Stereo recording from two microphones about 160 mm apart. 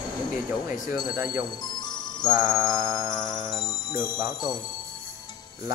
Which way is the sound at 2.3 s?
15° right (ahead or behind).